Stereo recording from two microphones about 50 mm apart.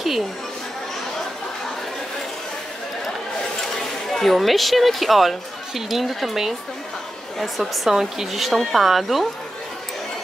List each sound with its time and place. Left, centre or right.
3.7 s speech: centre